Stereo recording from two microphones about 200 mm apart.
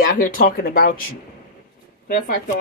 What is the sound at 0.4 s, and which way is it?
Speech, 45° left (ahead or behind).